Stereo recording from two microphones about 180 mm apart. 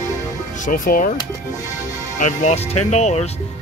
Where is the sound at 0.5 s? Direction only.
45° left (ahead or behind).